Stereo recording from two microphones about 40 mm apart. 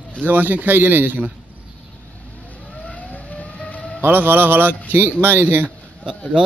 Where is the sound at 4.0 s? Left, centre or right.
Right.